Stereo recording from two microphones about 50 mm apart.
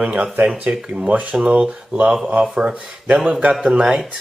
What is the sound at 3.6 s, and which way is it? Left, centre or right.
Speech, centre.